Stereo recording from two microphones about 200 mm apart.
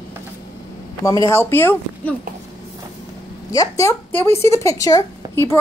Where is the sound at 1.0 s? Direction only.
15° left (ahead or behind).